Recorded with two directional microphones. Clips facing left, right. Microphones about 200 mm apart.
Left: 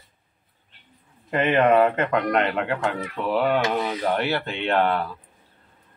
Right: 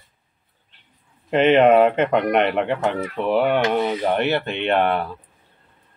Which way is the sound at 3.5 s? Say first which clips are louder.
Right 3 dB; 15° right (ahead or behind).